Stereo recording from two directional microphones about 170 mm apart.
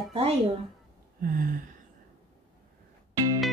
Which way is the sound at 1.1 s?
55° right (ahead or behind).